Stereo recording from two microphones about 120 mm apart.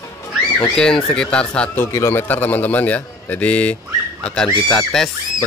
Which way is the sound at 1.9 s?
20° left (ahead or behind).